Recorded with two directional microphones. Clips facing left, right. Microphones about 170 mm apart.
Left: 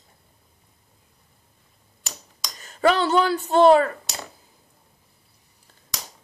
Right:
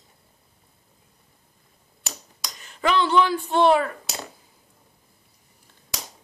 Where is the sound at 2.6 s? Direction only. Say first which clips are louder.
Left 3 dB; 40° left (ahead or behind).